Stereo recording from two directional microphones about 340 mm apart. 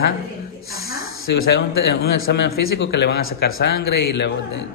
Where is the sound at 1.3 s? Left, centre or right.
Left.